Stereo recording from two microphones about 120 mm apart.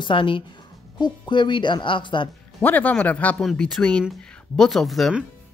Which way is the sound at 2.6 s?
15° left (ahead or behind).